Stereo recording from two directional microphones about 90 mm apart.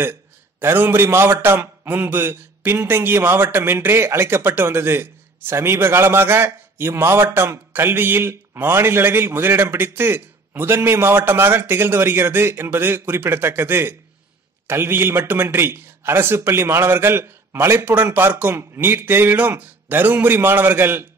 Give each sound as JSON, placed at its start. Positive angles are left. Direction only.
{"t": 0.6, "sound": "a man's voice", "side_deg": -25}